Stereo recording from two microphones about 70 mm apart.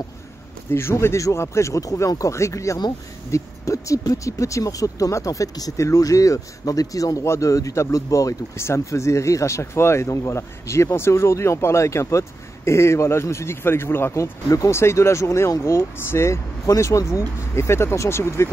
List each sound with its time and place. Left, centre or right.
0.7 s speech: left
14.1 s speech: left